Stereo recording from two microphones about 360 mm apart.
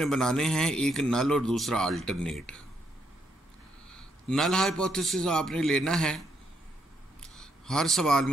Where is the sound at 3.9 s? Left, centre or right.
Centre.